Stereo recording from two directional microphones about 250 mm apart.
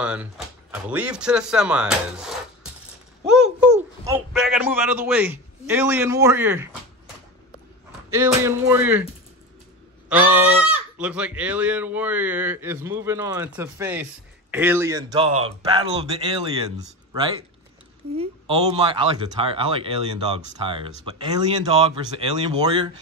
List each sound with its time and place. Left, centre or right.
0.0 s speech: centre
3.3 s a sound: centre
4.1 s a man's voice: centre
8.2 s a man's voice: centre
10.0 s a sound: centre
11.0 s a man's voice: centre